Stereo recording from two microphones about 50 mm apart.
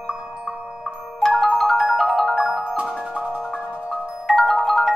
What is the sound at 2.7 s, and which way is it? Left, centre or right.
Marimba, right.